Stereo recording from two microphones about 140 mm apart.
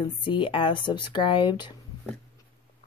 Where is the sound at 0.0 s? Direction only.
35° left (ahead or behind).